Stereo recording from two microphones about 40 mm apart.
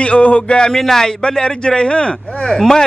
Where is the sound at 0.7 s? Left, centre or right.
Centre.